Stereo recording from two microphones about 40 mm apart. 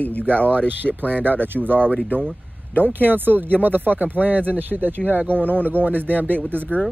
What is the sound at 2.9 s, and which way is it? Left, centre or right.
Speech, right.